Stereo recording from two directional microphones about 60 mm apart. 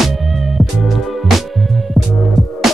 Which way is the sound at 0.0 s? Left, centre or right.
Centre.